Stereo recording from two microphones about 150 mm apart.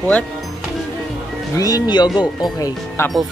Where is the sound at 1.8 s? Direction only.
30° left (ahead or behind).